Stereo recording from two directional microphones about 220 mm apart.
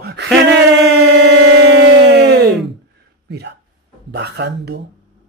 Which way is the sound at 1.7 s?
50° right (ahead or behind).